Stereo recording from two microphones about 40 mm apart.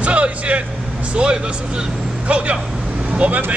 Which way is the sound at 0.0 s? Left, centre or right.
Right.